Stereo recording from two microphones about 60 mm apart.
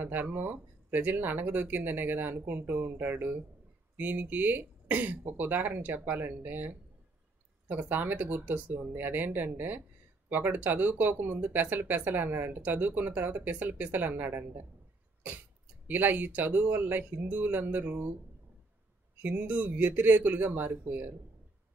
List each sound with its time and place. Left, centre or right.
0.0 s speech: right
7.9 s speech: right
15.9 s speech: right
19.2 s speech: right